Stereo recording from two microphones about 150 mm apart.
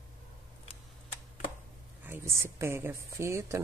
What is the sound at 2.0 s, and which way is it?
Speech, 15° right (ahead or behind).